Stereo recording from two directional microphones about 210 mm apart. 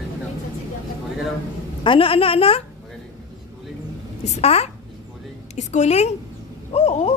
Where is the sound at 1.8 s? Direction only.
25° left (ahead or behind).